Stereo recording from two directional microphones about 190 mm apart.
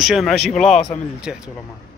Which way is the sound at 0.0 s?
Centre (ahead or behind).